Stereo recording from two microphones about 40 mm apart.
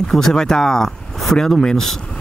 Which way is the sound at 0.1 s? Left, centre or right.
Centre.